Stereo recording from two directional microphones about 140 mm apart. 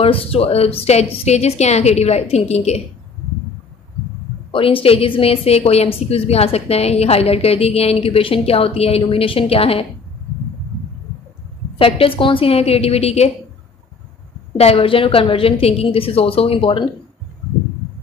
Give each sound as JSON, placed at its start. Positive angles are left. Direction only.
{"t": 0.0, "sound": "a woman's voice", "side_deg": 45}
{"t": 4.5, "sound": "a woman's voice", "side_deg": 40}
{"t": 11.8, "sound": "a woman's voice", "side_deg": 40}
{"t": 14.6, "sound": "a woman's voice", "side_deg": 45}